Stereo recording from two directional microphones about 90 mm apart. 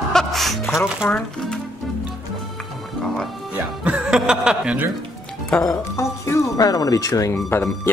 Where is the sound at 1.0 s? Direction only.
10° left (ahead or behind).